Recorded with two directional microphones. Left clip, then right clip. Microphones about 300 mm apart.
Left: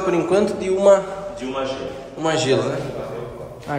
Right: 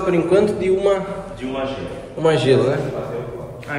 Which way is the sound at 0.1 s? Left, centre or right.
Centre.